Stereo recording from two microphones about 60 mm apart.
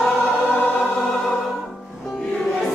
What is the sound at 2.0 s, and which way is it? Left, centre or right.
Music, centre.